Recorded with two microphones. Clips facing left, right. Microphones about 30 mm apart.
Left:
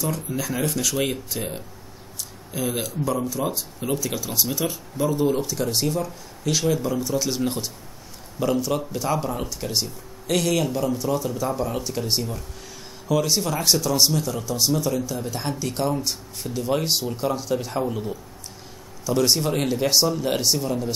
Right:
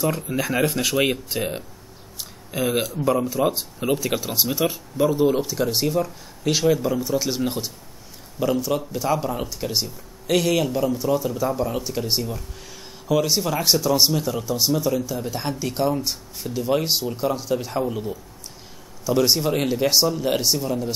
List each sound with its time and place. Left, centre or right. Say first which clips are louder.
0.1 s speech: right 4 dB; right
4.5 s speech: right 3 dB; centre